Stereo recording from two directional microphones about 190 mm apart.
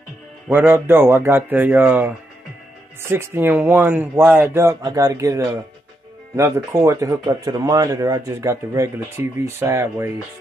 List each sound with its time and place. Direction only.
0.5 s speech: 10° right (ahead or behind)